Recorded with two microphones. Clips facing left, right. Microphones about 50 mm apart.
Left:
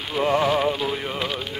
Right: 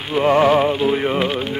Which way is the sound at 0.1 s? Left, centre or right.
Right.